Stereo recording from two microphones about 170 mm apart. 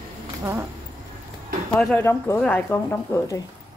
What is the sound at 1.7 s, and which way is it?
Speech, 10° left (ahead or behind).